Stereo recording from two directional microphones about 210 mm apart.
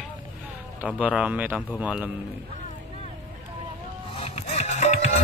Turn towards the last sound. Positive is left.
turn(degrees=35)  # may be behind; listen again after turning